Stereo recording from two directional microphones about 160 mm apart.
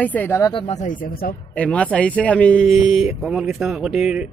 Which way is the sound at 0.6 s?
50° left (ahead or behind).